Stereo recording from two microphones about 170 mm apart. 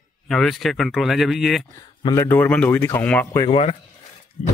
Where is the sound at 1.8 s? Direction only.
25° left (ahead or behind).